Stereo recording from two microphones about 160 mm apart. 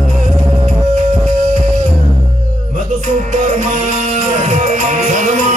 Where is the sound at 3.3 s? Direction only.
50° right (ahead or behind).